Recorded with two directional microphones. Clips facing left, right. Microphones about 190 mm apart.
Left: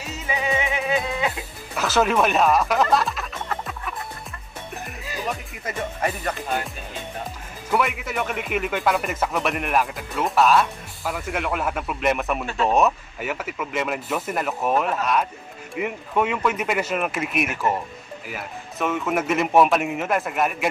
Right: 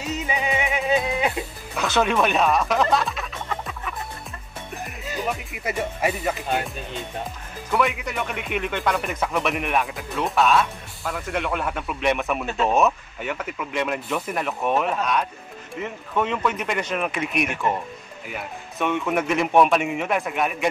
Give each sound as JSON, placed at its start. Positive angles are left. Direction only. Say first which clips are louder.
{"t": 0.0, "sound": "music", "louder": "right 1 dB", "side_deg": -20}
{"t": 1.8, "sound": "speech", "louder": "left 1 dB", "side_deg": 0}
{"t": 5.5, "sound": "speech", "louder": "right 2 dB", "side_deg": -10}
{"t": 7.7, "sound": "speech", "louder": "even", "side_deg": 5}